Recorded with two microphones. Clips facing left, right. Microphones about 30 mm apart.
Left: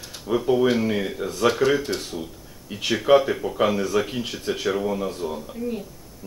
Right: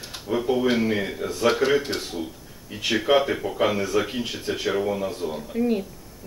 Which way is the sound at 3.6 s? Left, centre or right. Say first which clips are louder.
Left 1 dB; centre.